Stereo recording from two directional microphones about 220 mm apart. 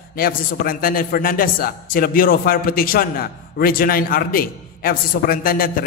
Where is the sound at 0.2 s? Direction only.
40° left (ahead or behind).